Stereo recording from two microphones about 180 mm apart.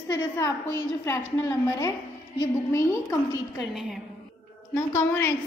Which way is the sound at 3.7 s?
Centre (ahead or behind).